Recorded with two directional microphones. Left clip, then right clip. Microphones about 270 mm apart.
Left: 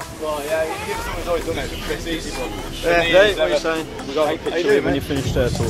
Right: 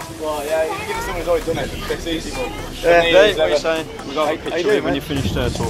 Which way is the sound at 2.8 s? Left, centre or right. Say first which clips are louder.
Right 4 dB; centre.